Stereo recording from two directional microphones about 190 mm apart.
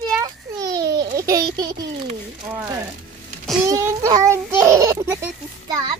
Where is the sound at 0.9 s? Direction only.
20° right (ahead or behind).